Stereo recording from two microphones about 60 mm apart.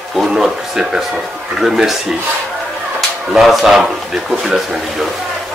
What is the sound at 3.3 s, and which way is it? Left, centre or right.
Speech, centre.